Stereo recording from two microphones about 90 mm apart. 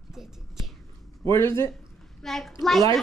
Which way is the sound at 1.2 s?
30° left (ahead or behind).